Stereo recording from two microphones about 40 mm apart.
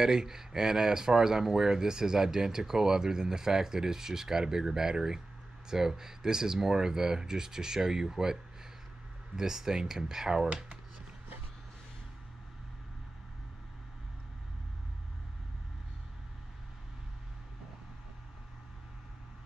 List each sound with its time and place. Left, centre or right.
0.0 s speech: centre